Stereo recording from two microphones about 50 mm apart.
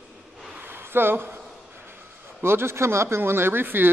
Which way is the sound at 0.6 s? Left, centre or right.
Right.